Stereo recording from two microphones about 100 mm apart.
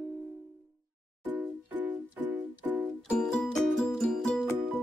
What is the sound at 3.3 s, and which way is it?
Music, 10° left (ahead or behind).